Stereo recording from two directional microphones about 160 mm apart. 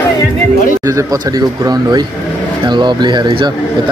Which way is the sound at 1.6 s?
25° right (ahead or behind).